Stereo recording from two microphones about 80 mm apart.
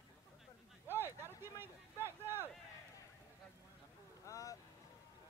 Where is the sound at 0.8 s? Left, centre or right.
Right.